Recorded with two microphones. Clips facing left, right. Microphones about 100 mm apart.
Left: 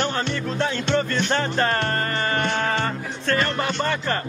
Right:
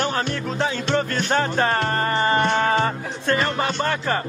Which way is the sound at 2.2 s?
25° right (ahead or behind).